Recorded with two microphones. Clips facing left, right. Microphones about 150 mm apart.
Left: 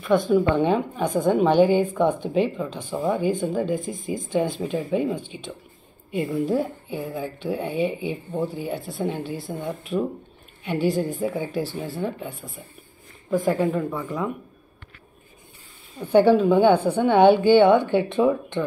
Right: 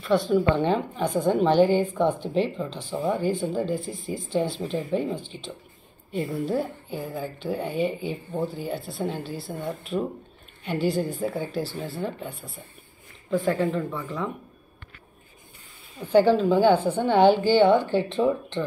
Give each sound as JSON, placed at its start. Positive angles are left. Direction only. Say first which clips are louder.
{"t": 0.3, "sound": "speech", "louder": "left 2 dB", "side_deg": 10}
{"t": 6.4, "sound": "speech", "louder": "left 3 dB", "side_deg": 15}
{"t": 16.1, "sound": "a woman's voice", "louder": "left 2 dB", "side_deg": 20}
{"t": 18.0, "sound": "speech", "louder": "left 3 dB", "side_deg": 55}